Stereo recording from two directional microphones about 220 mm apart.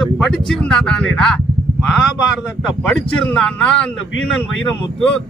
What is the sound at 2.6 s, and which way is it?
Speech, centre (ahead or behind).